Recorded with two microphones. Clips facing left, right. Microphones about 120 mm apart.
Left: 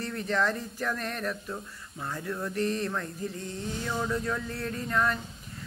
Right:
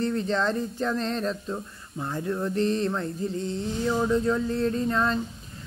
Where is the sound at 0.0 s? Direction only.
25° right (ahead or behind).